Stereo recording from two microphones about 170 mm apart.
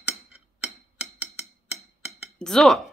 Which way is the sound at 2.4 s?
5° left (ahead or behind).